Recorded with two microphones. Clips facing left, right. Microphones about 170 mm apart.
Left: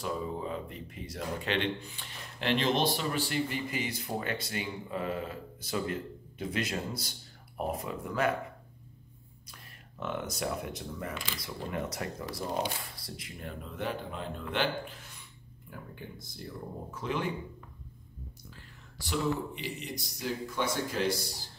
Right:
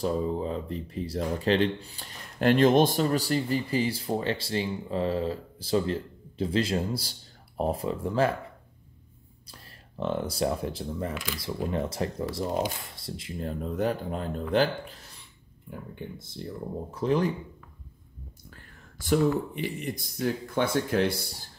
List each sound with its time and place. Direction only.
0.0 s speech: 35° right (ahead or behind)
9.5 s speech: 30° right (ahead or behind)
16.4 s speech: 25° right (ahead or behind)
16.9 s speech: 35° right (ahead or behind)
18.9 s speech: 50° right (ahead or behind)